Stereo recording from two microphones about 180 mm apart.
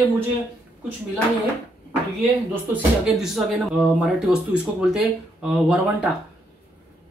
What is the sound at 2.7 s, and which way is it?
Speech, 5° right (ahead or behind).